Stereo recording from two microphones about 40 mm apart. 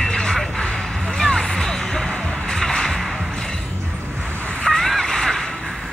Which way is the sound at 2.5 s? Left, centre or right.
Centre.